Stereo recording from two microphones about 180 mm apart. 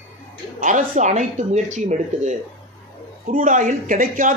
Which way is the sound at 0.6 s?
45° right (ahead or behind).